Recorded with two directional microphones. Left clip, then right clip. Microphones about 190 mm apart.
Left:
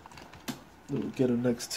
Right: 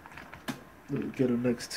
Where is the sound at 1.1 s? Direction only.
35° left (ahead or behind).